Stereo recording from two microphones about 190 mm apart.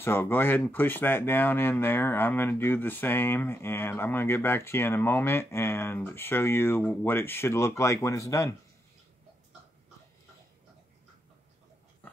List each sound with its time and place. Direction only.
0.0 s speech: 10° left (ahead or behind)